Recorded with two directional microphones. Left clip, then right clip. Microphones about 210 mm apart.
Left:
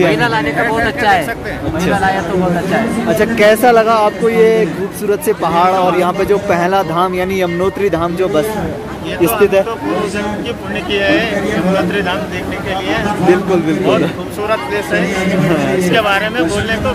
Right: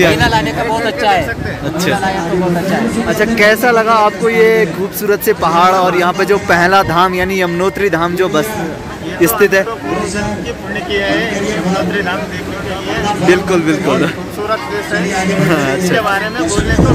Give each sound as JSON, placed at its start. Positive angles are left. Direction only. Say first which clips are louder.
{"t": 0.1, "sound": "speech", "louder": "right 2 dB", "side_deg": -35}
{"t": 0.8, "sound": "speech", "louder": "even", "side_deg": -5}
{"t": 3.2, "sound": "speech", "louder": "even", "side_deg": 0}
{"t": 10.9, "sound": "speech", "louder": "left 2 dB", "side_deg": 15}
{"t": 13.3, "sound": "speech", "louder": "right 1 dB", "side_deg": 0}
{"t": 16.0, "sound": "speech", "louder": "left 1 dB", "side_deg": 20}